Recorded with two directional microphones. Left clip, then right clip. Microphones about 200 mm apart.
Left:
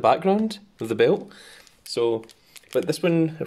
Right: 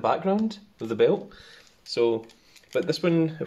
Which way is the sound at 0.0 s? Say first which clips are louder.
Left 5 dB; 50° left (ahead or behind).